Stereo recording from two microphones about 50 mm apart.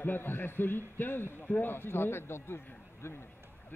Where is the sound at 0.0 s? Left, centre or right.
Left.